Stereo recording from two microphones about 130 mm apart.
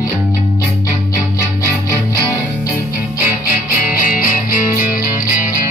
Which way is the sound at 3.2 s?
90° left.